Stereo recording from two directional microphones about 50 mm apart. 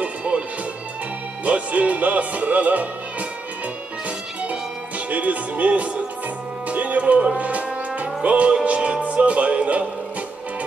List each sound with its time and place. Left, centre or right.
0.0 s music: right
1.4 s music: right
4.4 s music: right